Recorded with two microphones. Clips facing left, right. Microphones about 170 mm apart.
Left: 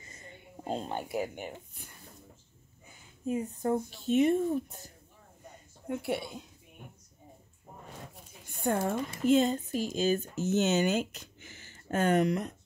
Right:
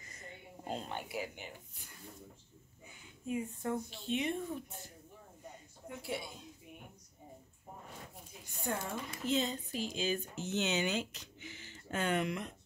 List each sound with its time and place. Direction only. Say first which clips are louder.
0.7 s speech: left 6 dB; 35° left (ahead or behind); by 1.9 s 50° left (ahead or behind)
3.3 s speech: left 6 dB; 40° left (ahead or behind)
5.9 s speech: left 8 dB; 60° left (ahead or behind)
8.5 s speech: left 9 dB; 50° left (ahead or behind)